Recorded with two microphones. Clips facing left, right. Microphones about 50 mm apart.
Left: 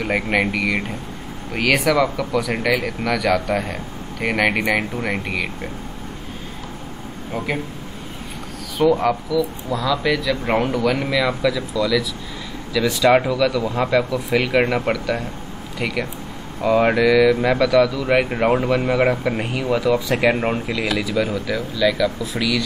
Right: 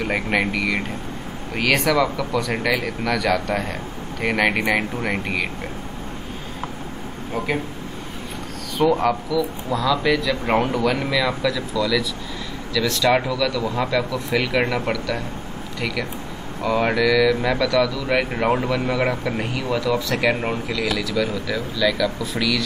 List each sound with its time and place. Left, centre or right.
0.0 s speech: centre
7.3 s speech: centre
8.7 s speech: centre
11.0 s speech: centre
12.7 s speech: centre